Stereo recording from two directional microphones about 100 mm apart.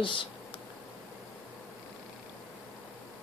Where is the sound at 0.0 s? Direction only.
55° left (ahead or behind).